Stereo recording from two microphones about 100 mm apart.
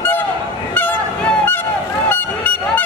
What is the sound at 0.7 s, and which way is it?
Goose, 20° left (ahead or behind).